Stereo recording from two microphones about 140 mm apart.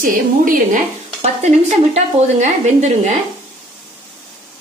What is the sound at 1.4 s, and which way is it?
A woman's voice, 55° right (ahead or behind).